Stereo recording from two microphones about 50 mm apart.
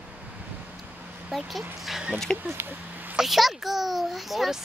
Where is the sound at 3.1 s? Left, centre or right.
Centre.